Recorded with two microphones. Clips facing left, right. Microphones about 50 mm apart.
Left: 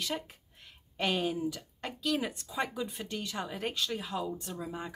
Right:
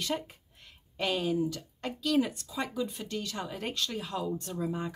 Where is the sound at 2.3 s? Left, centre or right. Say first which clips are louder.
Right 1 dB; left.